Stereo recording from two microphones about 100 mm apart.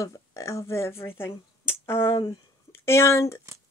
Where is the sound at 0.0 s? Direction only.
30° left (ahead or behind).